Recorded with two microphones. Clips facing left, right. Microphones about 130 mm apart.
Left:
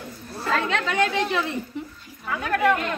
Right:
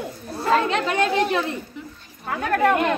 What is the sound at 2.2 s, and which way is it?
Speech, 40° right (ahead or behind).